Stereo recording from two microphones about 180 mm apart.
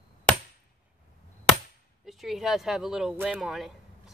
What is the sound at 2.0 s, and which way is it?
Speech, centre (ahead or behind).